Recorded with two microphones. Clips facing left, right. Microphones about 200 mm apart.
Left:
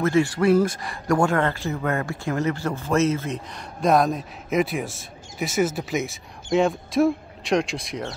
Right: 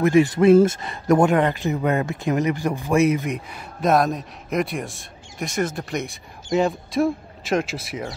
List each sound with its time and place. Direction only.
0.0 s speech: 15° right (ahead or behind)
3.8 s speech: centre (ahead or behind)